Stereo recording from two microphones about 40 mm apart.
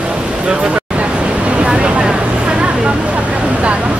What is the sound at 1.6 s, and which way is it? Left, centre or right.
Vehicle, right.